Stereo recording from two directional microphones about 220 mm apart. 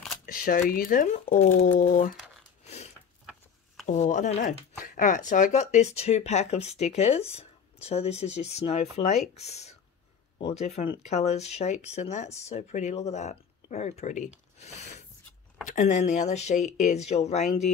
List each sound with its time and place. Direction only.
0.3 s speech: 40° left (ahead or behind)
2.6 s a sound: 30° left (ahead or behind)
3.8 s speech: 35° left (ahead or behind)